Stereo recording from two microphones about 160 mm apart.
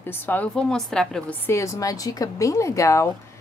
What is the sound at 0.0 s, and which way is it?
A woman's voice, 10° left (ahead or behind).